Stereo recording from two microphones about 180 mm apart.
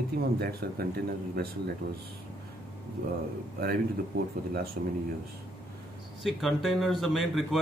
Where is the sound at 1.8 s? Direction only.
60° right (ahead or behind).